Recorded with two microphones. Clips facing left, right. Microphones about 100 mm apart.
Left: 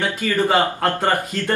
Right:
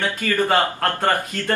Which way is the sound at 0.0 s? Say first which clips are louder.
Left 1 dB; 15° left (ahead or behind).